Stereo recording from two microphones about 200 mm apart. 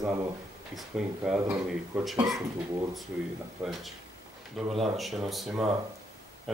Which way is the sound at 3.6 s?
15° right (ahead or behind).